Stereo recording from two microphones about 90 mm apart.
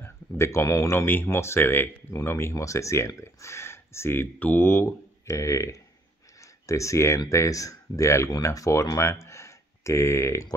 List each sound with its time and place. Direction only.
0.0 s speech: 30° left (ahead or behind)